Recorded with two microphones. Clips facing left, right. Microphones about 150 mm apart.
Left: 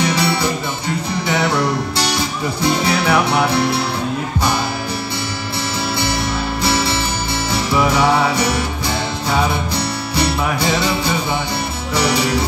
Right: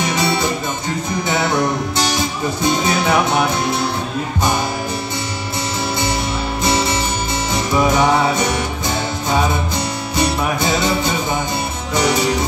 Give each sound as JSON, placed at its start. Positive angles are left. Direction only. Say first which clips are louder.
{"t": 0.0, "sound": "music", "louder": "left 1 dB", "side_deg": -20}
{"t": 6.6, "sound": "music", "louder": "right 1 dB", "side_deg": -20}